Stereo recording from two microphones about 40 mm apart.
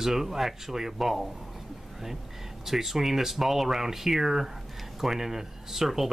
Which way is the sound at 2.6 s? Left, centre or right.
Centre.